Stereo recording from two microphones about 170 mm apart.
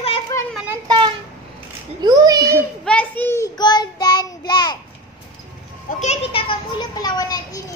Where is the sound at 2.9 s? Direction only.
10° left (ahead or behind).